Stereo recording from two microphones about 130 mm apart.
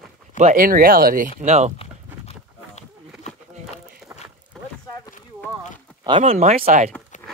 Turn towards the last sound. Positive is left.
turn(degrees=-85)